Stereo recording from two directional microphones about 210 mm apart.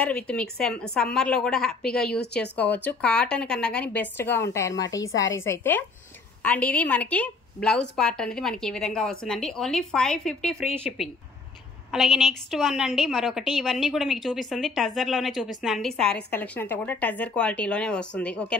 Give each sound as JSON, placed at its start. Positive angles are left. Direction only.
{"t": 0.0, "sound": "a woman's voice", "side_deg": 5}